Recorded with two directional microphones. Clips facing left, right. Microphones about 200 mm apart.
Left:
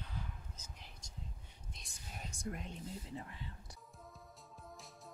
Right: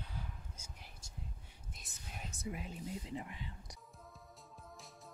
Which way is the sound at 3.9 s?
Centre (ahead or behind).